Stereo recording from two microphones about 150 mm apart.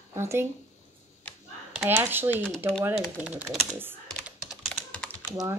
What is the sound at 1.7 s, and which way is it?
Speech, 10° right (ahead or behind).